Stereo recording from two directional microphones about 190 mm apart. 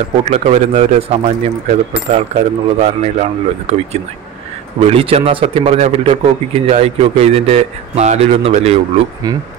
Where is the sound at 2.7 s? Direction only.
35° right (ahead or behind).